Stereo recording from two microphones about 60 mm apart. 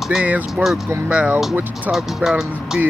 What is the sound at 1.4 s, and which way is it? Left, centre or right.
Speech, centre.